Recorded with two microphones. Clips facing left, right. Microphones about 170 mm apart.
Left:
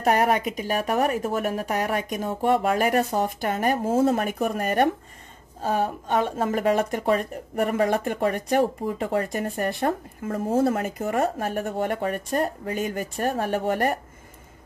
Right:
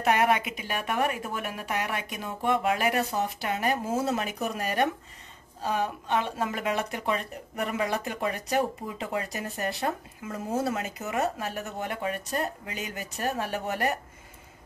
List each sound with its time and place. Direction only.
0.0 s speech: 40° left (ahead or behind)